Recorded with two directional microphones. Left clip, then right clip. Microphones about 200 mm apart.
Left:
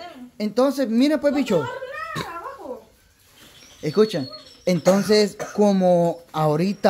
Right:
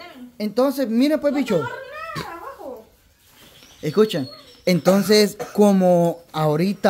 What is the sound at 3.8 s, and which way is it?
Speech, 5° right (ahead or behind).